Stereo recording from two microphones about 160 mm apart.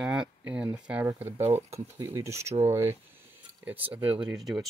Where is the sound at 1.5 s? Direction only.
20° right (ahead or behind).